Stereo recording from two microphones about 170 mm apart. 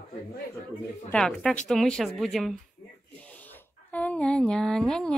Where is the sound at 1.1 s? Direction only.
5° left (ahead or behind).